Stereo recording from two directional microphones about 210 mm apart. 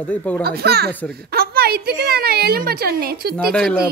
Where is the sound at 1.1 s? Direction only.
45° right (ahead or behind).